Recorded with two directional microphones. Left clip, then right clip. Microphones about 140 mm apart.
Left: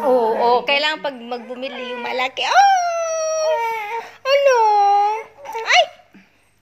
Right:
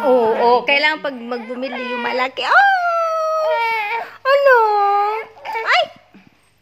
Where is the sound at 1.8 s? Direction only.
40° right (ahead or behind).